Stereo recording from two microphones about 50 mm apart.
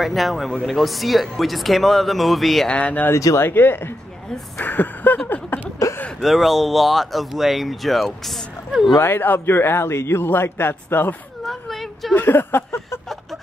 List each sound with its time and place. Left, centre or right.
0.0 s speech: centre
2.7 s speech: left
3.1 s speech: left
3.5 s a man's voice: left
5.5 s a sound: left
6.2 s speech: centre
9.0 s a man's voice: left
11.4 s a sound: centre
12.2 s a sound: left